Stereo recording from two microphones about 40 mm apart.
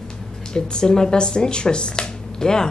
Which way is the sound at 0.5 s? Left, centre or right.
Centre.